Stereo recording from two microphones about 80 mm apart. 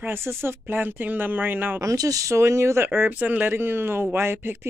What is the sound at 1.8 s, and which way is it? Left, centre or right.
Speech, right.